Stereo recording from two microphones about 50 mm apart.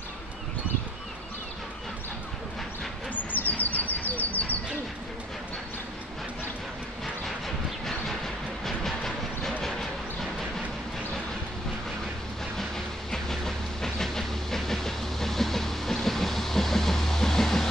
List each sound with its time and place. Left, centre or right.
3.3 s bird: left
7.2 s vehicle: centre
8.6 s train: centre
12.5 s train: centre